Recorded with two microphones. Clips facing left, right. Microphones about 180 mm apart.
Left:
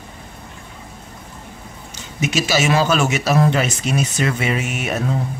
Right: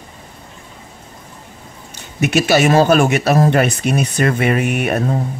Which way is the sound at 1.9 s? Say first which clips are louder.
Right 5 dB; 60° right (ahead or behind).